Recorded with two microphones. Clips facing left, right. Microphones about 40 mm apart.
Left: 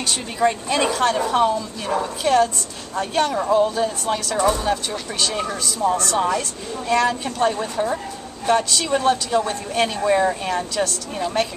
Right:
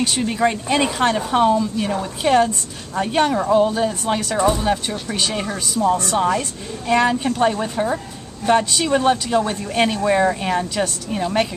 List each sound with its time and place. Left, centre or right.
0.0 s a woman's voice: centre